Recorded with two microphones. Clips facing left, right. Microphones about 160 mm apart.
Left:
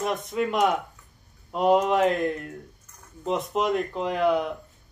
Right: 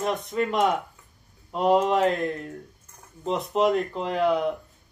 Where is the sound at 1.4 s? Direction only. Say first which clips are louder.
Even; centre (ahead or behind).